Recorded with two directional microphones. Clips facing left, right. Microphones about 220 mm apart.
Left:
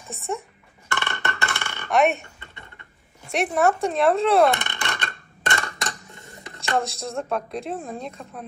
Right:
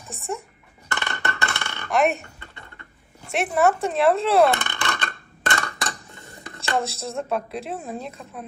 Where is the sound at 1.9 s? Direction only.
Centre (ahead or behind).